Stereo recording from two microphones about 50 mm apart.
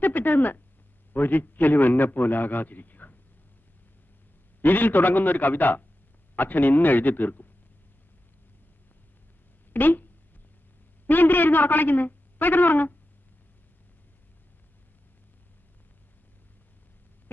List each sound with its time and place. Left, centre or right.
0.0 s a sound: left
1.1 s a man's voice: left
4.6 s a man's voice: left
9.7 s speech: left
11.1 s a man's voice: left